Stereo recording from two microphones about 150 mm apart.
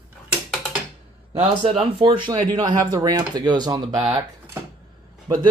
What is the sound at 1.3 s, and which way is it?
Speech, 40° right (ahead or behind).